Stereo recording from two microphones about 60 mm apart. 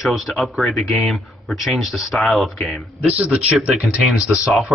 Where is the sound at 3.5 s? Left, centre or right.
Centre.